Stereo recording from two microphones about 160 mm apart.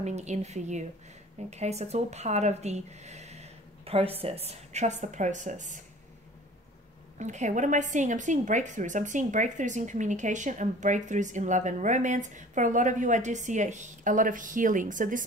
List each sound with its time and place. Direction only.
0.0 s a woman's voice: 45° right (ahead or behind)
7.2 s a woman's voice: 50° right (ahead or behind)